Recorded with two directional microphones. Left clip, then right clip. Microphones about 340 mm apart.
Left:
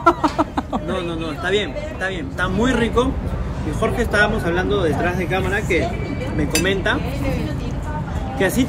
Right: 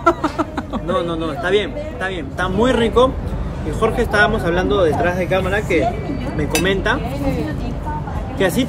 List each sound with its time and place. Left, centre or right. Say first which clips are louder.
0.0 s a sound: left 1 dB; centre
0.8 s a man's voice: right 4 dB; centre
8.4 s a man's voice: right 1 dB; centre